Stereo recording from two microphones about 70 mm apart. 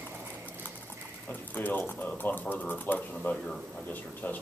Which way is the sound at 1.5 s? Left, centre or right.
Left.